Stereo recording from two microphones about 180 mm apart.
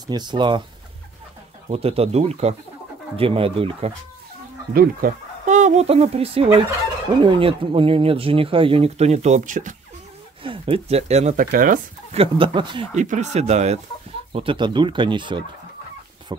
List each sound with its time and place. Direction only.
0.0 s speech: 25° right (ahead or behind)
1.7 s speech: 35° right (ahead or behind)
4.7 s speech: 50° right (ahead or behind)
10.4 s speech: 30° right (ahead or behind); by 12.2 s 50° right (ahead or behind)
12.2 s speech: 25° right (ahead or behind)
12.9 s speech: 40° right (ahead or behind); by 16.5 s 25° right (ahead or behind)